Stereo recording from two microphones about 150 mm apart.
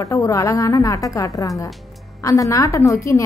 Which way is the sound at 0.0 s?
20° left (ahead or behind).